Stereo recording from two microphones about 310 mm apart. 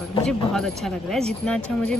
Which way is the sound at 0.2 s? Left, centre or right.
Centre.